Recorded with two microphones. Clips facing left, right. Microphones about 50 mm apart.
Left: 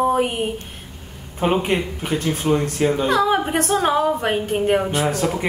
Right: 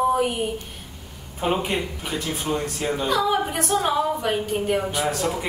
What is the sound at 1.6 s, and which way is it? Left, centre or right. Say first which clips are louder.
Speech: left 5 dB; left.